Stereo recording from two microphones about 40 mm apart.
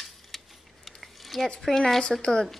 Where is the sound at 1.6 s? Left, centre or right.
Centre.